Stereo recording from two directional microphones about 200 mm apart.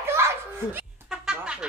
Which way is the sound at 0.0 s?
15° right (ahead or behind).